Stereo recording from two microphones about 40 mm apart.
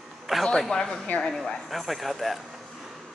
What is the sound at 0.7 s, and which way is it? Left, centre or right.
Speech, centre.